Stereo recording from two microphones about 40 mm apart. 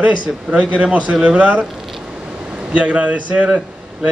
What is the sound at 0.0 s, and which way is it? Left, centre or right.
Speech, right.